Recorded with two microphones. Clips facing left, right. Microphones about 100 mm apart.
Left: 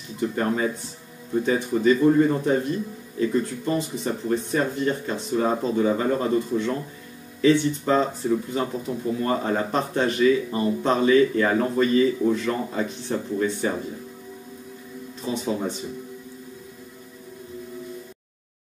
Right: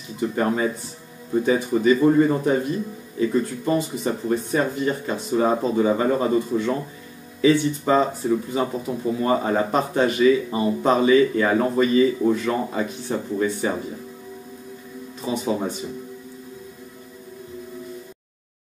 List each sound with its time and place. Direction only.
0.2 s speech: 5° right (ahead or behind)
15.2 s speech: 5° right (ahead or behind)